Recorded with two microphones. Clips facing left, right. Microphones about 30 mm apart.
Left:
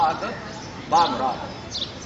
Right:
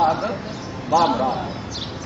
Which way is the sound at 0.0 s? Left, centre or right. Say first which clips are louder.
Right 3 dB; centre.